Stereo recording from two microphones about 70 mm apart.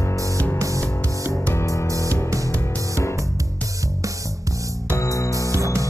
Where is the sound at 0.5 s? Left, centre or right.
Right.